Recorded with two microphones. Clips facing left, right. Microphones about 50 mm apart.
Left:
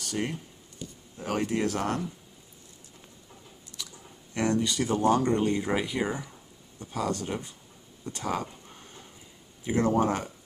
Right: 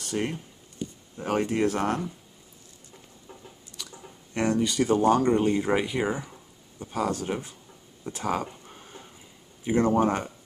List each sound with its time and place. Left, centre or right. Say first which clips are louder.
0.0 s speech: right 2 dB; centre
4.3 s speech: right 2 dB; centre
8.0 s a sound: right 3 dB; centre
9.7 s speech: right 2 dB; centre